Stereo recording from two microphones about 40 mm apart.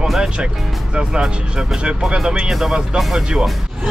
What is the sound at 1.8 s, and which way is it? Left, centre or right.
Speech, right.